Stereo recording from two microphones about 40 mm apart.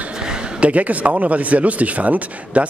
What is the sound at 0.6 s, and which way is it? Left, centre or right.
Speech, right.